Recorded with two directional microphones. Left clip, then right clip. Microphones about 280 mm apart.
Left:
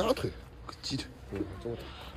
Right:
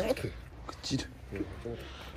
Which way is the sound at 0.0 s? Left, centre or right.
Left.